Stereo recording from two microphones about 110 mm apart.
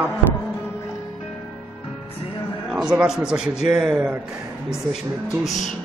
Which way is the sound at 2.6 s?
5° right (ahead or behind).